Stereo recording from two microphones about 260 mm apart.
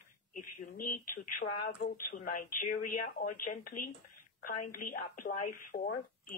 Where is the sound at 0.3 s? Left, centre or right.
Left.